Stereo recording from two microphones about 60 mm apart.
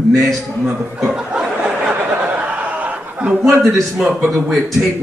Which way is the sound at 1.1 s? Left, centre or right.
Centre.